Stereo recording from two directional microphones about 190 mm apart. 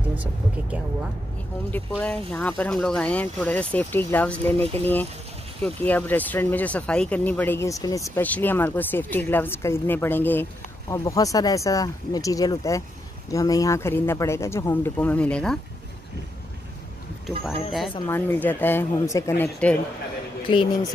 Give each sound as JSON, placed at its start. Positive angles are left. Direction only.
{"t": 0.1, "sound": "speech", "side_deg": -5}
{"t": 2.0, "sound": "speech", "side_deg": 5}
{"t": 18.0, "sound": "speech", "side_deg": 10}
{"t": 20.4, "sound": "speech", "side_deg": 25}